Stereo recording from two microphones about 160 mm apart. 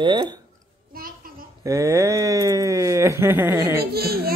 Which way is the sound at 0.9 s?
65° right (ahead or behind).